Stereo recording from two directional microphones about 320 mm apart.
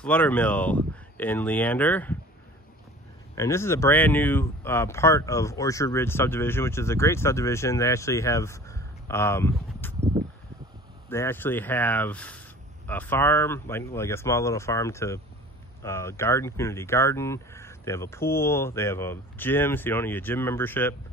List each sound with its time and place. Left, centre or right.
0.0 s speech: centre
3.3 s speech: centre
11.1 s speech: centre